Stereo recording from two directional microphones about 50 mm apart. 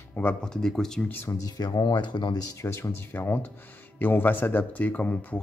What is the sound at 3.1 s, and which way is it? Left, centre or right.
Speech, left.